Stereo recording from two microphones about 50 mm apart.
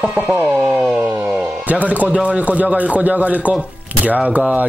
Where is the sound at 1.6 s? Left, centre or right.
Right.